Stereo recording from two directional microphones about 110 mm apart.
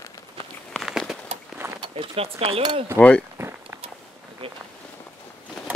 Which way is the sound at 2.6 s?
45° right (ahead or behind).